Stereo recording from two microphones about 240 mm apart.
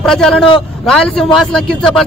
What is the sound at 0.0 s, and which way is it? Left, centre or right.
A man's voice, centre.